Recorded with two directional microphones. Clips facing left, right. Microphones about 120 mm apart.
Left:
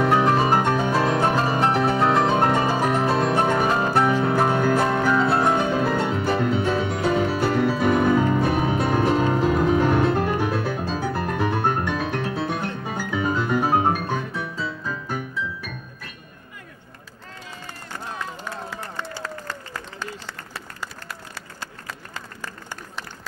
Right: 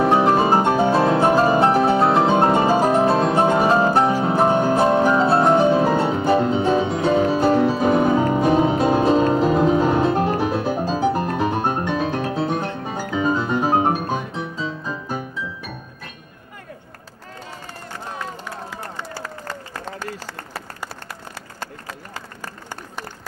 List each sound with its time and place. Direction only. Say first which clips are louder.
0.0 s music: right 3 dB; 30° right (ahead or behind)
1.3 s music: right 5 dB; 35° right (ahead or behind)
2.8 s music: right 4 dB; 30° right (ahead or behind)
6.7 s music: right 4 dB; 15° right (ahead or behind)
7.3 s music: right 4 dB; 40° right (ahead or behind)
8.2 s music: right 4 dB; 20° right (ahead or behind)
10.2 s music: right 3 dB; 30° right (ahead or behind)
10.5 s music: right 4 dB; 20° right (ahead or behind)
19.1 s a sound: right 1 dB; 45° right (ahead or behind)